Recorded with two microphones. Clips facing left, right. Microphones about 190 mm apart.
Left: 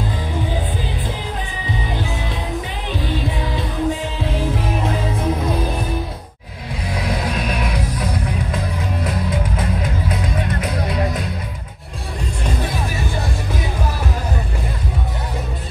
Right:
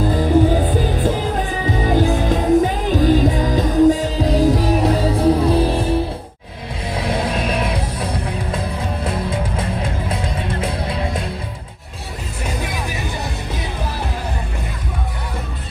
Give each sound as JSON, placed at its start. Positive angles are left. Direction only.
{"t": 0.1, "sound": "music", "side_deg": -45}